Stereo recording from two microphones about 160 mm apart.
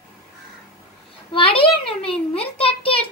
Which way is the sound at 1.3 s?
35° left (ahead or behind).